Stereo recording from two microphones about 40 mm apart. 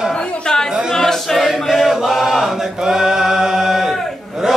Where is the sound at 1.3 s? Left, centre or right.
Centre.